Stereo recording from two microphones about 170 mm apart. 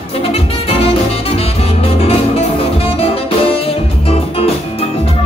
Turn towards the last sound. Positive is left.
turn(degrees=35)  # may be behind; listen again after turning